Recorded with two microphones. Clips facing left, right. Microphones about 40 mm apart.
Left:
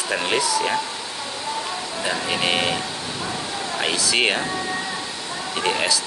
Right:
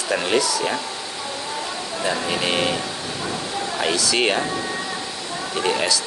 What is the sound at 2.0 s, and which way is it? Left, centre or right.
Speech, centre.